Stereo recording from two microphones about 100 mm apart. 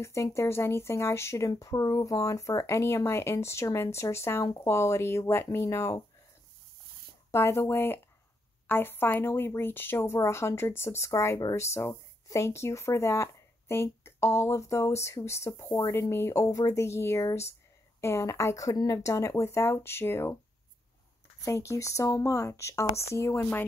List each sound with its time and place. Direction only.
0.0 s speech: 30° left (ahead or behind)
7.2 s speech: 25° left (ahead or behind)
21.5 s speech: 30° left (ahead or behind)